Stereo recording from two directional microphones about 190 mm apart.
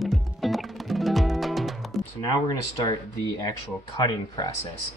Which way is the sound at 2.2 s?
20° left (ahead or behind).